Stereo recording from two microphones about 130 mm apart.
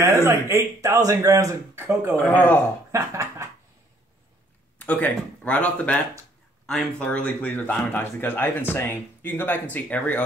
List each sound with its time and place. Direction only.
0.0 s speech: 20° right (ahead or behind)
2.2 s speech: 15° left (ahead or behind)
2.9 s speech: 20° right (ahead or behind)
4.7 s speech: 10° left (ahead or behind)